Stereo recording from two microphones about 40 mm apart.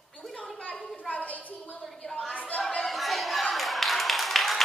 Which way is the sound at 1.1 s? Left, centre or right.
Left.